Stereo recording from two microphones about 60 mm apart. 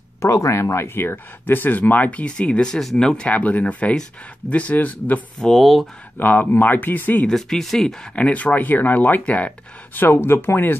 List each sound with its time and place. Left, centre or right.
0.2 s speech: left; by 3.3 s centre
3.3 s speech: left
5.4 s speech: centre
6.1 s speech: left
7.2 s speech: centre
8.2 s speech: left
9.9 s speech: left